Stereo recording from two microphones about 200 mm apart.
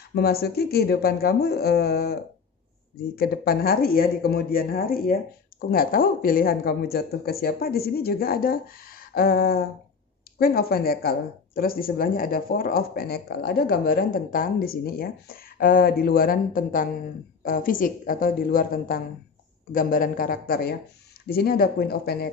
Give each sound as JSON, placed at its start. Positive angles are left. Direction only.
{"t": 0.1, "sound": "speech", "side_deg": 50}
{"t": 3.2, "sound": "speech", "side_deg": 50}